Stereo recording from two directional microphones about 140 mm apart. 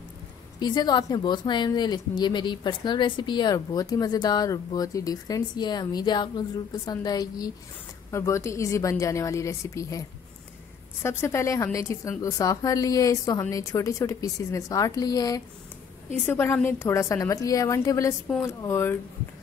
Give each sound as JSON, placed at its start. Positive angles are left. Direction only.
{"t": 0.6, "sound": "a woman's voice", "side_deg": 30}
{"t": 16.3, "sound": "a woman's voice", "side_deg": 15}